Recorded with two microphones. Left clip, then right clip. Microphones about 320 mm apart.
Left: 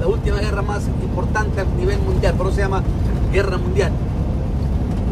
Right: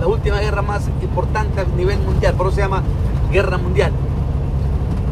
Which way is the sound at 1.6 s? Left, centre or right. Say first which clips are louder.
Right 2 dB; centre.